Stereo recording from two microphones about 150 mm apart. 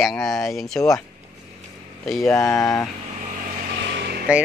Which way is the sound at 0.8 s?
20° left (ahead or behind).